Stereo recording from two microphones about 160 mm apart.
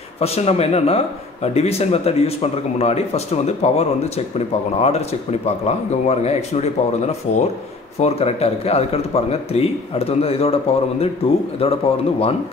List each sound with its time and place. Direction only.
0.2 s speech: 40° left (ahead or behind)